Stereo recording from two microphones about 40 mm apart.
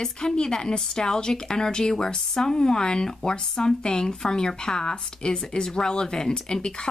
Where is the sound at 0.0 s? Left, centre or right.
Centre.